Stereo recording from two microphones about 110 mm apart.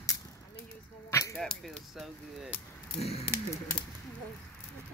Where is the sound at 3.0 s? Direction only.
65° left (ahead or behind).